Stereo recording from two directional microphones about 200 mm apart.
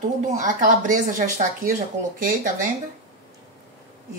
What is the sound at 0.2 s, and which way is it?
Speech, 40° right (ahead or behind).